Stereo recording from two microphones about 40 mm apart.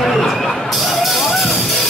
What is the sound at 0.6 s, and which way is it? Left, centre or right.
Music, centre.